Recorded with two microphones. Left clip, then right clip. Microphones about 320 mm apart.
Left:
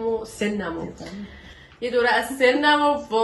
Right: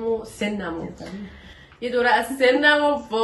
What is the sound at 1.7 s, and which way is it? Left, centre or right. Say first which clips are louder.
A woman's voice: right 1 dB; centre.